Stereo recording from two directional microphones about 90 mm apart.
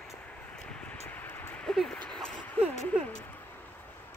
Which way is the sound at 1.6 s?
5° left (ahead or behind).